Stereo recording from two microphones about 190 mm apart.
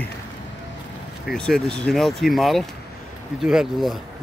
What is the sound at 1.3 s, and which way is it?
Speech, 5° left (ahead or behind).